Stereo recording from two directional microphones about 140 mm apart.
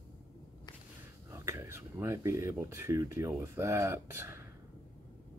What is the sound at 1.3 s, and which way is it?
Speech, 20° right (ahead or behind).